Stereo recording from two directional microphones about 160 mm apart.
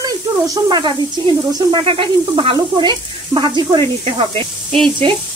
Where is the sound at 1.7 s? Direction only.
35° right (ahead or behind).